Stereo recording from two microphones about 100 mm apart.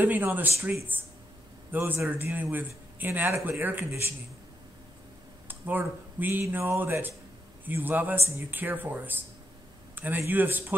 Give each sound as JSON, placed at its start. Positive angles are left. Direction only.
{"t": 0.0, "sound": "a man's voice", "side_deg": -20}
{"t": 5.5, "sound": "a man's voice", "side_deg": -20}